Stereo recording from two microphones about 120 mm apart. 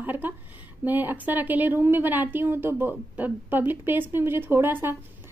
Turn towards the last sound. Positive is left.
turn(degrees=-20)  # may be behind; listen again after turning